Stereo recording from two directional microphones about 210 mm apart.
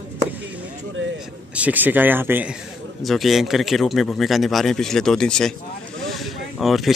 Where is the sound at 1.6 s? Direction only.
10° right (ahead or behind).